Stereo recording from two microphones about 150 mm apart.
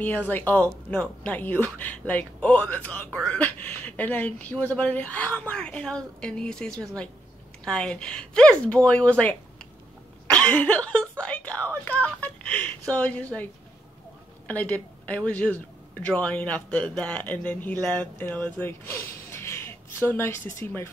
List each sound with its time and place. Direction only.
0.0 s speech: 10° left (ahead or behind)
14.5 s speech: 10° left (ahead or behind)